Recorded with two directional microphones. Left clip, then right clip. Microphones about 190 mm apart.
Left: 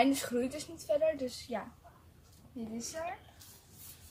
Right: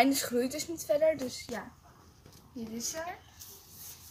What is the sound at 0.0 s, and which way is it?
A woman's voice, 30° right (ahead or behind).